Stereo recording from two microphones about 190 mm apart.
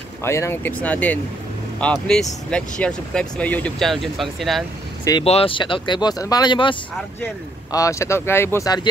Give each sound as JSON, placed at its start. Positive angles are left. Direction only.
{"t": 0.2, "sound": "speech", "side_deg": 15}
{"t": 5.2, "sound": "speech", "side_deg": 30}